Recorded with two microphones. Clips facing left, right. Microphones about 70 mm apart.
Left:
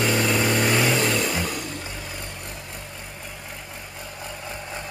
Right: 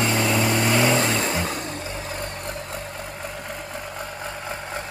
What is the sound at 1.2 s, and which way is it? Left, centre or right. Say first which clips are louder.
Vehicle: right 1 dB; right.